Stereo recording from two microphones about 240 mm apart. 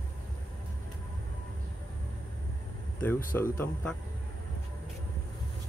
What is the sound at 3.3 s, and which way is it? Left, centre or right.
Speech, centre.